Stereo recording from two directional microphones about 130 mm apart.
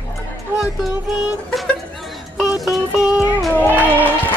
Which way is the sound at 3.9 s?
15° left (ahead or behind).